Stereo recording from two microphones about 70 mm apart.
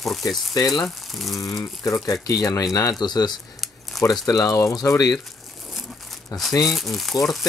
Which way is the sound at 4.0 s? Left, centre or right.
Left.